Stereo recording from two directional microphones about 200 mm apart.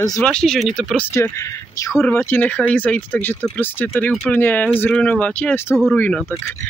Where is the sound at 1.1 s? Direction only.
10° left (ahead or behind).